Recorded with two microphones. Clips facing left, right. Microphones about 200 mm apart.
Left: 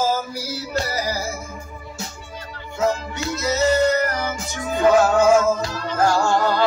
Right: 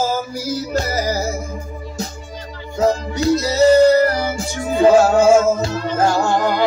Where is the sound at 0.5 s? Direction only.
40° right (ahead or behind).